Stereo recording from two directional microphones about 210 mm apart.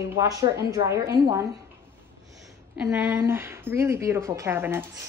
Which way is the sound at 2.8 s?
10° right (ahead or behind).